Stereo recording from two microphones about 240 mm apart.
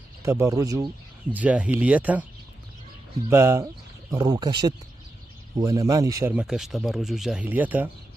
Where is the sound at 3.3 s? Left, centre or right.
Centre.